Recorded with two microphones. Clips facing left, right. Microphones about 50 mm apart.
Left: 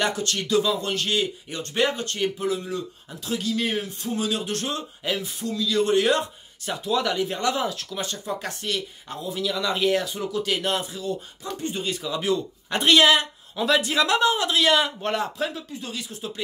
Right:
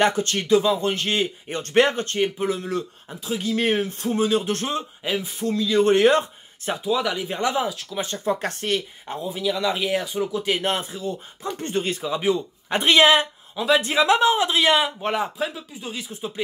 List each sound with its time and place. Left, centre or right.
0.0 s speech: right
1.6 s speech: right
2.1 s speech: right
5.4 s speech: right
6.8 s speech: centre
7.3 s speech: centre
7.6 s speech: centre
7.9 s speech: right
8.2 s speech: right
8.7 s speech: right
9.5 s speech: centre; by 11.1 s right
11.5 s speech: right
11.9 s speech: right; by 15.9 s centre
15.9 s speech: right